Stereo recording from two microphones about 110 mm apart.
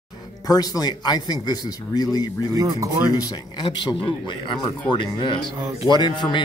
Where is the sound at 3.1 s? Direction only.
35° left (ahead or behind).